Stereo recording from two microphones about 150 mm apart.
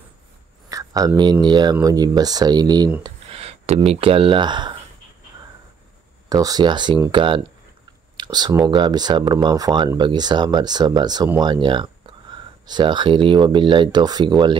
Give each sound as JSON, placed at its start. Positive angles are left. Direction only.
{"t": 0.7, "sound": "speech", "side_deg": -25}
{"t": 3.3, "sound": "speech", "side_deg": -40}
{"t": 6.2, "sound": "speech", "side_deg": -25}